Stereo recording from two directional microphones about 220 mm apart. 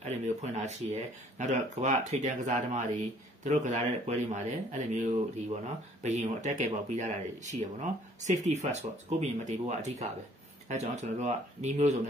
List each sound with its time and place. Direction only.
0.0 s speech: 30° right (ahead or behind)